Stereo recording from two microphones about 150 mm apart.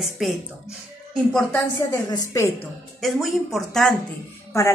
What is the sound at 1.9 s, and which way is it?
Speech, 20° left (ahead or behind).